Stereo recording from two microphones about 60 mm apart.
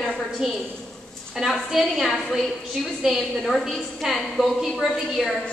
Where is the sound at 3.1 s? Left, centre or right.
Centre.